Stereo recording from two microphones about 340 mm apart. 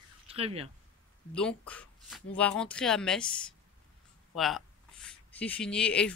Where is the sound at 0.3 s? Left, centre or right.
Centre.